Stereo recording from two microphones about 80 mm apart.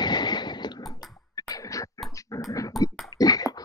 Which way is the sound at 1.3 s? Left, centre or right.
Left.